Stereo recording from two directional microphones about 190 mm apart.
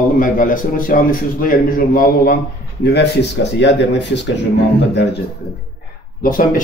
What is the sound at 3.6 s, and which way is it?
Speech, 70° left (ahead or behind).